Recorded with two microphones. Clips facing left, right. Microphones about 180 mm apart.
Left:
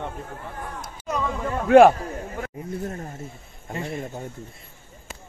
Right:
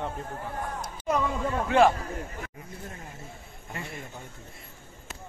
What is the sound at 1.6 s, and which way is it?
Speech, 55° left (ahead or behind).